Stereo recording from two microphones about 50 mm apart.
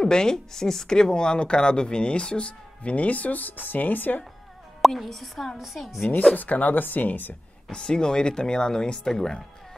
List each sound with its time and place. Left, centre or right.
0.0 s speech: centre; by 4.2 s left
4.8 s a woman's voice: centre
6.3 s speech: left
7.7 s speech: centre